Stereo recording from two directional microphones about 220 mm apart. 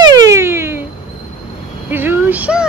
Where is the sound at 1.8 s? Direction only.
10° right (ahead or behind).